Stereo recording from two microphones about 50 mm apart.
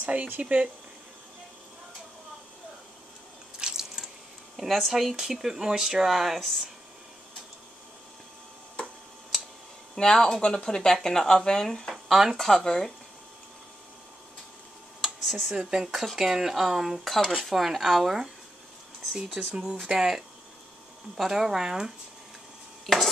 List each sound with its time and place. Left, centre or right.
0.0 s speech: right
3.5 s drip: centre
4.6 s speech: centre
9.3 s a sound: centre
9.9 s speech: centre
11.9 s speech: centre
12.4 s speech: centre
15.2 s speech: centre
15.5 s speech: centre
19.5 s speech: centre